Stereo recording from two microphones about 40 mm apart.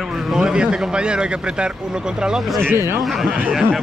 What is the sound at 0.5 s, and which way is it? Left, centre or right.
A man's voice, right.